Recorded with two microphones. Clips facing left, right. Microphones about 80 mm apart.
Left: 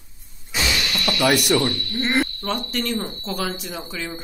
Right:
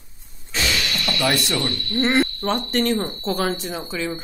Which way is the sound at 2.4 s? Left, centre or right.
Right.